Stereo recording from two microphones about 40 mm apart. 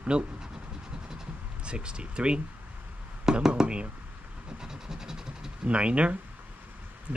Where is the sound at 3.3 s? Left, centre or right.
Centre.